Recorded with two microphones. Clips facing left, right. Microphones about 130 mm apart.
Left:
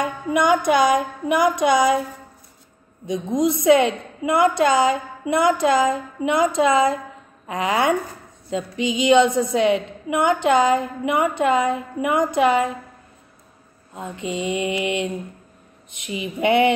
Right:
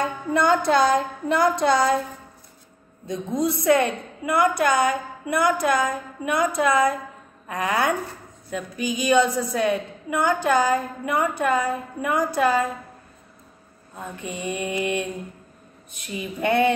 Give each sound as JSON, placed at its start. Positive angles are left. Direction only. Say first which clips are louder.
{"t": 0.0, "sound": "a woman's voice", "louder": "left 2 dB", "side_deg": 15}
{"t": 3.1, "sound": "a woman's voice", "louder": "left 4 dB", "side_deg": 15}
{"t": 13.9, "sound": "a woman's voice", "louder": "left 5 dB", "side_deg": 20}